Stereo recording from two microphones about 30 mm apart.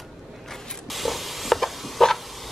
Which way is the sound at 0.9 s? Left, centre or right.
Centre.